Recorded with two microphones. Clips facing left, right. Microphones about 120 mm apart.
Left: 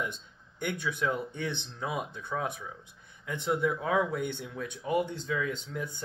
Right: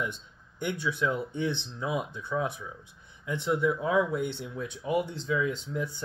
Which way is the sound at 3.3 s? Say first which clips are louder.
Right 2 dB; 50° left (ahead or behind).